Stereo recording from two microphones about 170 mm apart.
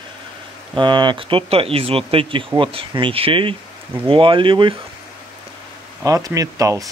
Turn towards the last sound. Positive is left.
turn(degrees=-20)  # may be behind; listen again after turning